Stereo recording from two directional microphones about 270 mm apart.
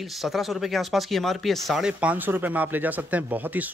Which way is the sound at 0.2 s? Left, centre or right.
Centre.